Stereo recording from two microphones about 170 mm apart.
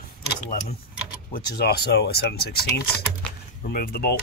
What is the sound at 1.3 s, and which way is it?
Speech, 70° left (ahead or behind).